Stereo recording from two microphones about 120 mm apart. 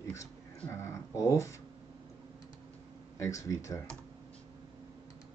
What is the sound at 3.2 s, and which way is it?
Speech, 25° left (ahead or behind).